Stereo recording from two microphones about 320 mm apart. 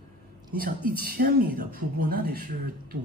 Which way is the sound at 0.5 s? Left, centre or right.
Right.